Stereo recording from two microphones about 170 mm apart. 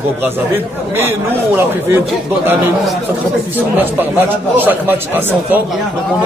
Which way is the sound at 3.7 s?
10° right (ahead or behind).